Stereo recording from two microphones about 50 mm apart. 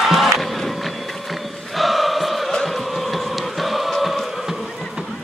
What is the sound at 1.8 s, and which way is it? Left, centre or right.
Chant, centre.